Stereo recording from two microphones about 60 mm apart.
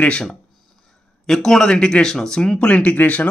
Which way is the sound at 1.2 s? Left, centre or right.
Centre.